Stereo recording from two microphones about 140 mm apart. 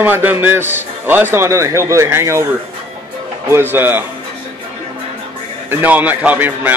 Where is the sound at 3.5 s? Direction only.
15° right (ahead or behind).